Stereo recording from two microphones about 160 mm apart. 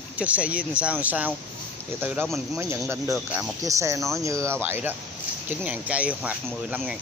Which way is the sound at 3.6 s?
20° right (ahead or behind).